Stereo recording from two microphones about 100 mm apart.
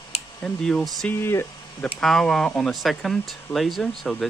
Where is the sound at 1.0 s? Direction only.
25° left (ahead or behind).